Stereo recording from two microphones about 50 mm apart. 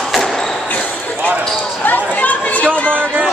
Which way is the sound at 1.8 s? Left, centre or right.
Left.